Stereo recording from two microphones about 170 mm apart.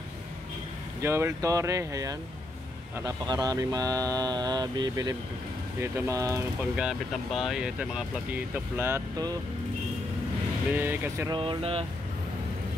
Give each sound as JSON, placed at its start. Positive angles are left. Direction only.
{"t": 1.0, "sound": "speech", "side_deg": -15}
{"t": 6.6, "sound": "speech", "side_deg": -5}
{"t": 10.7, "sound": "speech", "side_deg": -10}
{"t": 11.2, "sound": "speech", "side_deg": -30}